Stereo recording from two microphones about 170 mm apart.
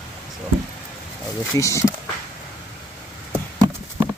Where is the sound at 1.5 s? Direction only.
15° left (ahead or behind).